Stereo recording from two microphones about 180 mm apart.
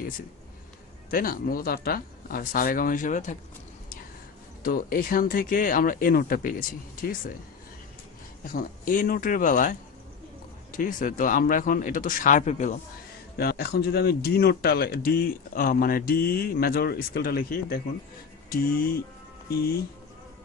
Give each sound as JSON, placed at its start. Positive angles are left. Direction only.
{"t": 1.1, "sound": "speech", "side_deg": 50}
{"t": 4.6, "sound": "speech", "side_deg": 50}
{"t": 8.5, "sound": "speech", "side_deg": 50}
{"t": 10.8, "sound": "speech", "side_deg": 45}
{"t": 13.4, "sound": "speech", "side_deg": 60}